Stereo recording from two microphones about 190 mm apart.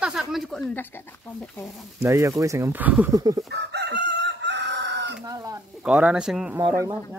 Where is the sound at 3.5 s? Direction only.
60° right (ahead or behind).